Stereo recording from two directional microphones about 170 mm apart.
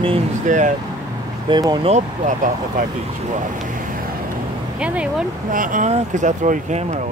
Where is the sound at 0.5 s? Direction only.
45° right (ahead or behind).